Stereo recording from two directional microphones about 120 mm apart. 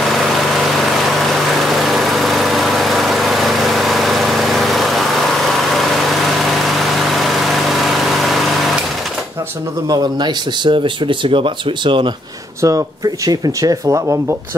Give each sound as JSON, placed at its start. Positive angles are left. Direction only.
{"t": 0.7, "sound": "a sound", "side_deg": 0}
{"t": 1.6, "sound": "vehicle", "side_deg": 0}
{"t": 6.6, "sound": "vehicle", "side_deg": 0}
{"t": 9.8, "sound": "speech", "side_deg": -35}
{"t": 12.6, "sound": "speech", "side_deg": -25}